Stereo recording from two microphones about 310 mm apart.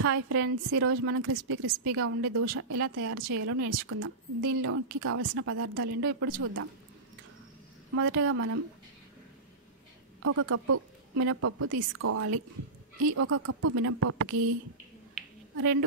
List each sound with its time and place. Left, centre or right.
0.0 s a woman's voice: right
5.9 s speech: right
7.9 s a woman's voice: right
10.2 s a woman's voice: right